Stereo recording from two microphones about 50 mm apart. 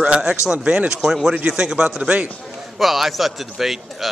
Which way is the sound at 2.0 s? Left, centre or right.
Right.